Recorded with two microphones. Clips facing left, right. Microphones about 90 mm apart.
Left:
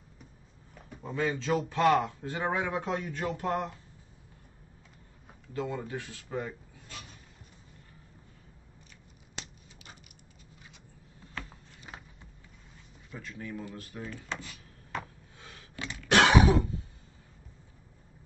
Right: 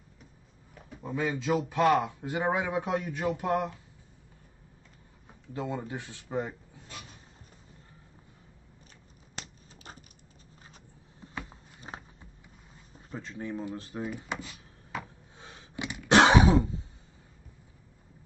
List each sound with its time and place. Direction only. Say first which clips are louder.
0.7 s a sound: right 1 dB; centre (ahead or behind)
1.1 s a man's voice: right 1 dB; 15° right (ahead or behind)
5.5 s speech: even; 20° right (ahead or behind)
11.1 s a sound: right 2 dB; 20° right (ahead or behind)
11.9 s a sound: right 4 dB; 35° right (ahead or behind)
12.9 s speech: right 3 dB; 35° right (ahead or behind)
14.0 s a man's voice: right 2 dB; 15° right (ahead or behind)
14.9 s rub: even; 5° right (ahead or behind)
15.3 s throat clearing: right 4 dB; 25° right (ahead or behind)